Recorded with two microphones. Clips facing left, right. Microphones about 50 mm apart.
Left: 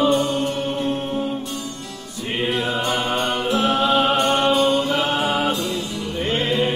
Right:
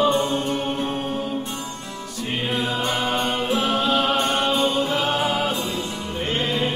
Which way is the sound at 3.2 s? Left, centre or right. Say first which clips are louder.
Left 2 dB; centre.